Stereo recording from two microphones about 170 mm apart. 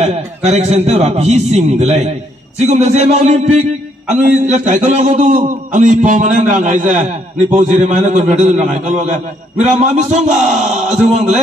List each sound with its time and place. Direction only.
0.0 s a man's voice: 40° right (ahead or behind)